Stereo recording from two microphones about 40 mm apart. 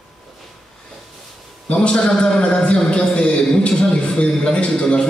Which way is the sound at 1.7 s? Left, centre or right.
Left.